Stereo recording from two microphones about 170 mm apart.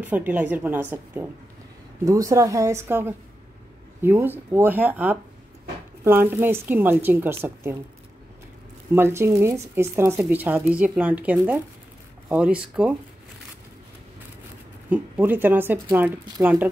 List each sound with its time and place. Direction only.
0.0 s speech: 10° right (ahead or behind)
8.9 s speech: 15° right (ahead or behind)
14.9 s speech: 10° right (ahead or behind)